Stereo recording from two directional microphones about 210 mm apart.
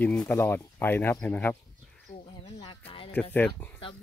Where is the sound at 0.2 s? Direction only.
10° left (ahead or behind).